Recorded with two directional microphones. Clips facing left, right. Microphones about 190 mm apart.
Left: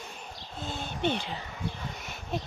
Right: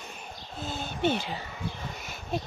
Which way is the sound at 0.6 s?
5° right (ahead or behind).